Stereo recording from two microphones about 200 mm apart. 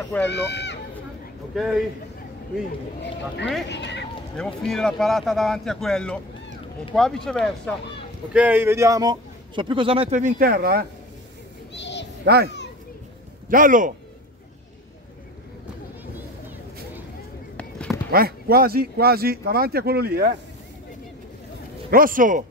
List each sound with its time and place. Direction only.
0.3 s speech: 60° left (ahead or behind)
1.5 s speech: centre (ahead or behind)
3.6 s speech: 60° left (ahead or behind)
4.4 s a man's voice: 5° left (ahead or behind); by 10.9 s 50° right (ahead or behind)
11.7 s a sound: 60° left (ahead or behind)
13.5 s a man's voice: 40° right (ahead or behind)
17.6 s run: 5° left (ahead or behind)
18.1 s speech: 50° right (ahead or behind)
21.9 s speech: 45° right (ahead or behind)